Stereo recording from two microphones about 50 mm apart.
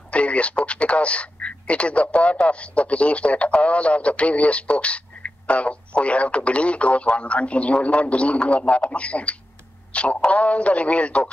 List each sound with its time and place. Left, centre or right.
0.1 s a man's voice: left